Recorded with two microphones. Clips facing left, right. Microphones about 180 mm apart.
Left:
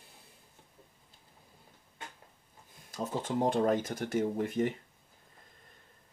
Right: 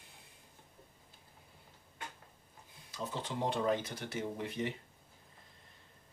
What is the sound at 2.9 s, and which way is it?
Speech, 50° left (ahead or behind).